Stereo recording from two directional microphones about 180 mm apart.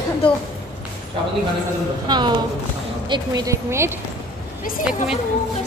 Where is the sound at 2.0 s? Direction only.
25° right (ahead or behind).